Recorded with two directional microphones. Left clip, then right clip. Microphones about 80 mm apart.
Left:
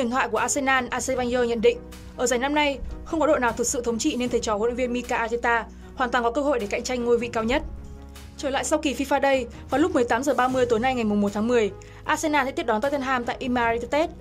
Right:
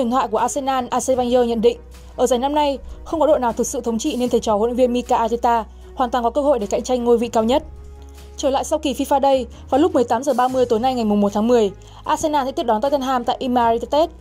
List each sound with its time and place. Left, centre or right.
0.0 s a woman's voice: right